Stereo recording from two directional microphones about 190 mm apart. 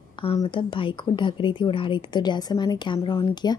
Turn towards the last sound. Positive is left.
turn(degrees=20)  # may be behind; listen again after turning